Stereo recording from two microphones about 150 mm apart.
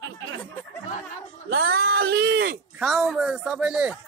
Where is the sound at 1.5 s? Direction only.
90° right.